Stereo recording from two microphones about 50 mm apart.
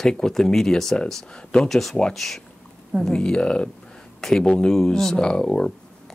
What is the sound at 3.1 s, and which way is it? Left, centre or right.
Speech, centre.